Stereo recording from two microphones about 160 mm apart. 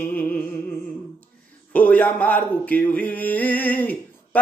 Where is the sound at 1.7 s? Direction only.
10° left (ahead or behind).